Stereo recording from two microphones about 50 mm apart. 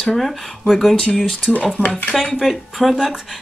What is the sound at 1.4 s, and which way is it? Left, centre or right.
Speech, left.